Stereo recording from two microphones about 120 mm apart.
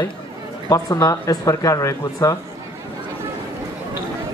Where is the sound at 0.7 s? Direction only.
30° left (ahead or behind).